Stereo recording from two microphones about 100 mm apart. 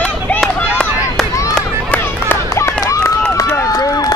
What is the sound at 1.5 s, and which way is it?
Run, 20° left (ahead or behind).